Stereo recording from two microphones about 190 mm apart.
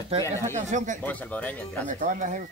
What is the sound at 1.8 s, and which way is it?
Speech, 40° right (ahead or behind).